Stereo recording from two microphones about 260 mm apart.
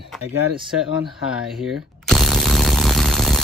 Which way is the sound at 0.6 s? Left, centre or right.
Centre.